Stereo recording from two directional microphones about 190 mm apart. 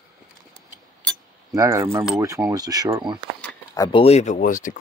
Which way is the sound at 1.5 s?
15° right (ahead or behind).